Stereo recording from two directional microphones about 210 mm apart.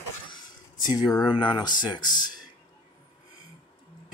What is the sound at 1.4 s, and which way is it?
Speech, 20° left (ahead or behind).